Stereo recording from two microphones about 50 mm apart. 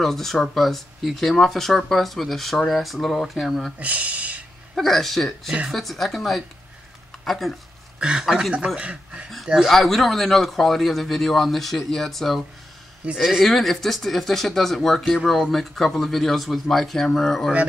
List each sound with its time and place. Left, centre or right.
0.0 s speech: centre
3.8 s speech: right
4.7 s speech: centre
8.0 s speech: centre
9.7 s speech: centre